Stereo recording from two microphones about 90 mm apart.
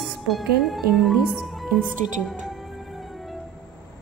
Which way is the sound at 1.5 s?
Centre (ahead or behind).